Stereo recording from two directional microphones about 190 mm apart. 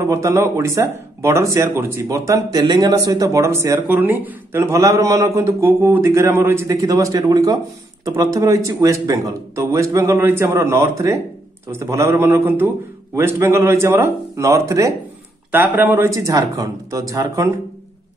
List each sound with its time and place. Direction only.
0.0 s speech: 15° right (ahead or behind)